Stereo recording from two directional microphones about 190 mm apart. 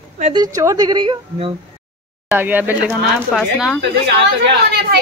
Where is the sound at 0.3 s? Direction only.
20° right (ahead or behind).